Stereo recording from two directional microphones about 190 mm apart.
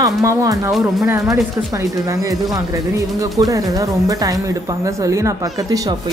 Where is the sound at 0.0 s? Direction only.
15° right (ahead or behind).